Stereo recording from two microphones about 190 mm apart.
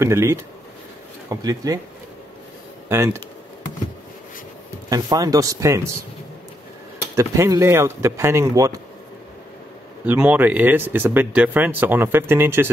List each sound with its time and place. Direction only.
0.0 s speech: 15° right (ahead or behind)
2.9 s speech: 15° right (ahead or behind)
4.8 s speech: 20° right (ahead or behind)
7.2 s speech: 15° right (ahead or behind)
10.0 s speech: 10° right (ahead or behind)